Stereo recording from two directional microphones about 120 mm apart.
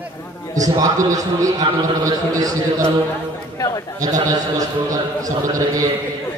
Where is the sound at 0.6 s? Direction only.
30° right (ahead or behind).